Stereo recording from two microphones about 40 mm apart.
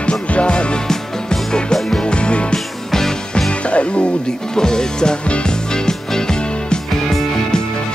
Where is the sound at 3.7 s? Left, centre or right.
Left.